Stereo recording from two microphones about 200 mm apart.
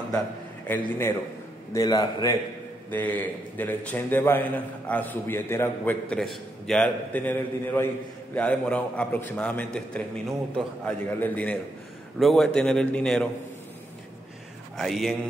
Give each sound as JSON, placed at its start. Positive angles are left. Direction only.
{"t": 0.7, "sound": "a man's voice", "side_deg": 10}
{"t": 2.9, "sound": "a man's voice", "side_deg": 10}
{"t": 14.8, "sound": "a man's voice", "side_deg": 0}